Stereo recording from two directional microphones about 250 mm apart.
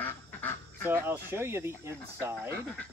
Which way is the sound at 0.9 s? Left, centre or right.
Centre.